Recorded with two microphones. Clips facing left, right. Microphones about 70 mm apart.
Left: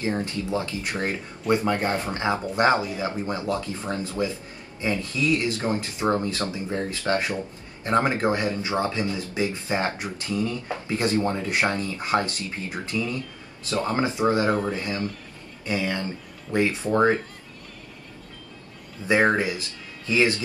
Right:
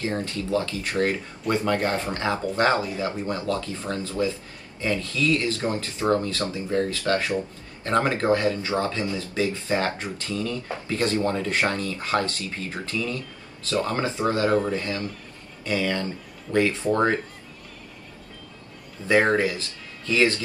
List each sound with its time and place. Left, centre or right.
0.0 s speech: left
16.5 s speech: centre
19.0 s speech: centre